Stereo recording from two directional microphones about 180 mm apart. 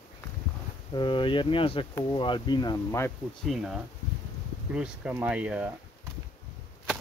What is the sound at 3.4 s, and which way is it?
Speech, centre (ahead or behind).